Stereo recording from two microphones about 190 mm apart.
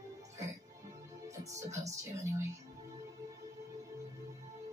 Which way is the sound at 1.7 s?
15° right (ahead or behind).